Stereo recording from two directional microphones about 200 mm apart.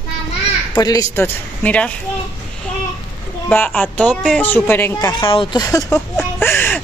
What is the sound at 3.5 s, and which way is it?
Speech, 5° left (ahead or behind).